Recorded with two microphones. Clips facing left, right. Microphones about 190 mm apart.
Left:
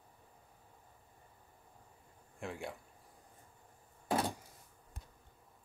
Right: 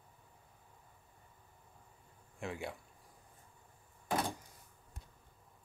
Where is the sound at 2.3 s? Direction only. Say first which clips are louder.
Right 1 dB; centre (ahead or behind).